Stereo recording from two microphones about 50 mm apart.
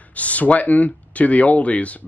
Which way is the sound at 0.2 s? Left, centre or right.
Left.